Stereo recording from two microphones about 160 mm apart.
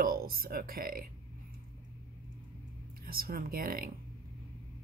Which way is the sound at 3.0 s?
70° right (ahead or behind).